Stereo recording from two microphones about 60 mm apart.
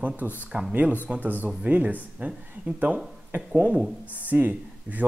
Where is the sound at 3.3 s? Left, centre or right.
Right.